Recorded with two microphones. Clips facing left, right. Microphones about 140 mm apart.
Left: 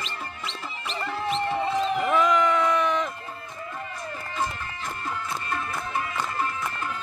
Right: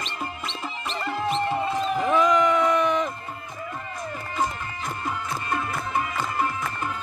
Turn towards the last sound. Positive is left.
turn(degrees=-15)  # may be behind; listen again after turning